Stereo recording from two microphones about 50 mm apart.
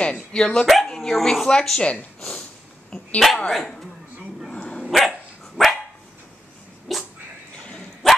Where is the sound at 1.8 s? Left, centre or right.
Left.